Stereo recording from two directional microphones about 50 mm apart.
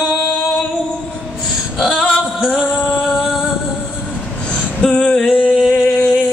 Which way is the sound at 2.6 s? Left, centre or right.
Centre.